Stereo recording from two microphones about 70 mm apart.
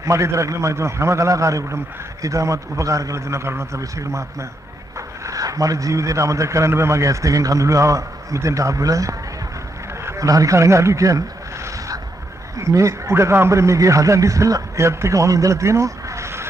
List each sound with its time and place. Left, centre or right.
0.0 s speech: right
10.0 s vehicle: right
12.5 s speech: right